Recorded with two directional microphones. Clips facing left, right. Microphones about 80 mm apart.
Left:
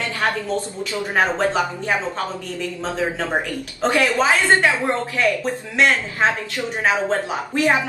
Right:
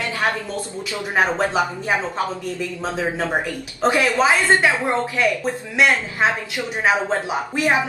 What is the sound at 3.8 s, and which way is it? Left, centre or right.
A woman's voice, centre.